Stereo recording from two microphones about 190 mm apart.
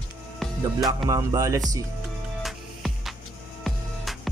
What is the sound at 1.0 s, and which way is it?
Music, 15° right (ahead or behind).